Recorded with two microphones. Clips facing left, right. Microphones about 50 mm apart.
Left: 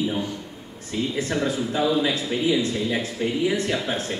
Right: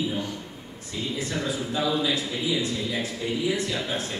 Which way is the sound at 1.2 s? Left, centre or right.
Left.